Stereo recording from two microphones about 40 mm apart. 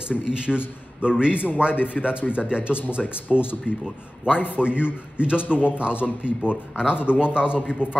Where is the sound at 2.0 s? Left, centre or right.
Centre.